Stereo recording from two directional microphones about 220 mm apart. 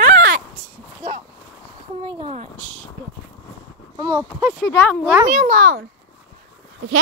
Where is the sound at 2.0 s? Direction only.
25° right (ahead or behind).